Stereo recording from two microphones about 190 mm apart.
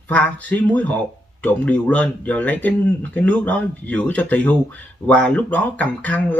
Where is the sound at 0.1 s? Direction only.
10° left (ahead or behind).